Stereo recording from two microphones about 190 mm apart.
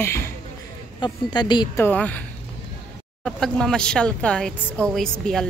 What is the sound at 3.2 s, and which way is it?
Speech, centre (ahead or behind).